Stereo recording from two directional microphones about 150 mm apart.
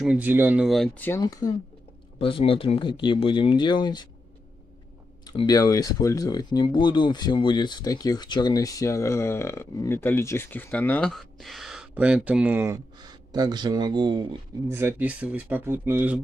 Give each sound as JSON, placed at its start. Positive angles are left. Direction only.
{"t": 0.0, "sound": "speech", "side_deg": -10}
{"t": 0.7, "sound": "speech", "side_deg": 0}
{"t": 1.2, "sound": "speech", "side_deg": 25}
{"t": 2.1, "sound": "speech", "side_deg": 40}
{"t": 5.2, "sound": "speech", "side_deg": 30}
{"t": 13.3, "sound": "speech", "side_deg": -30}
{"t": 14.7, "sound": "speech", "side_deg": -15}